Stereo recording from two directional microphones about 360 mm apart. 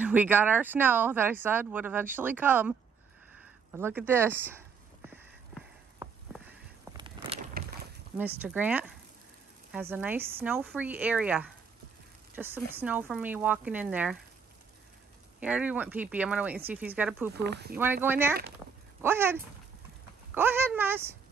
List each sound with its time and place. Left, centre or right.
0.0 s speech: centre
3.7 s a sound: centre
7.6 s a sound: right
8.4 s speech: centre
15.4 s speech: centre
17.4 s speech: right
17.7 s speech: centre
20.3 s speech: centre